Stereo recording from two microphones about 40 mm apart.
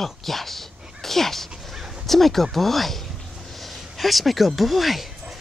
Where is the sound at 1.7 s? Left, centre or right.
Centre.